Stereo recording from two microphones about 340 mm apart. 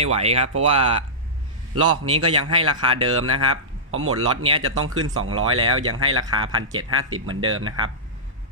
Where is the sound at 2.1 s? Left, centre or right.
Right.